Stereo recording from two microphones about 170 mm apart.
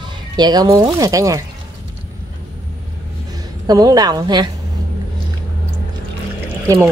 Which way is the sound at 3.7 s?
20° right (ahead or behind).